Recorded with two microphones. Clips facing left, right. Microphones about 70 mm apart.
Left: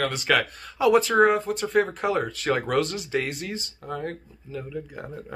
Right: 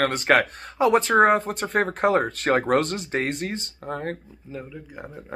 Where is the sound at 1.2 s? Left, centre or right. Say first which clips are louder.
Right 1 dB; right.